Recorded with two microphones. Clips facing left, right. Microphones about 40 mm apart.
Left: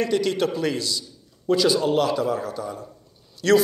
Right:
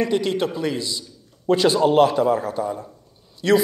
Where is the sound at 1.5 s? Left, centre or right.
Right.